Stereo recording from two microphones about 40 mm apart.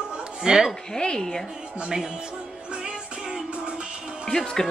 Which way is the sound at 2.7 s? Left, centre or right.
Right.